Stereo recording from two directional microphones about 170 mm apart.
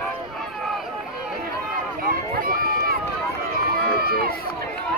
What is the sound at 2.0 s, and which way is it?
Run, 55° right (ahead or behind).